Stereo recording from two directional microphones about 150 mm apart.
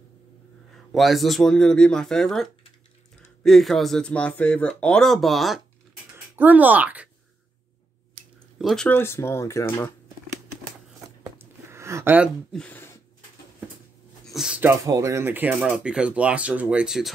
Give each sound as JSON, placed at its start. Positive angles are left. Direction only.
{"t": 0.9, "sound": "speech", "side_deg": 0}
{"t": 6.1, "sound": "speech", "side_deg": -10}
{"t": 8.5, "sound": "speech", "side_deg": 5}
{"t": 8.9, "sound": "speech", "side_deg": 15}
{"t": 11.3, "sound": "a sound", "side_deg": -20}
{"t": 12.5, "sound": "speech", "side_deg": 10}
{"t": 14.2, "sound": "speech", "side_deg": 0}